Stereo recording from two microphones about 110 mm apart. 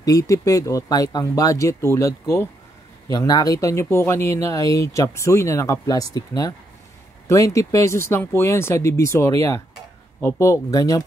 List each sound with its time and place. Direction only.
0.0 s speech: 30° left (ahead or behind)